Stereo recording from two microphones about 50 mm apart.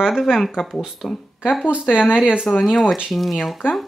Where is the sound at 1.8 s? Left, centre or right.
Left.